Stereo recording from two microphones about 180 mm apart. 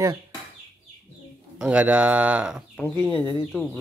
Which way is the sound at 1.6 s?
5° right (ahead or behind).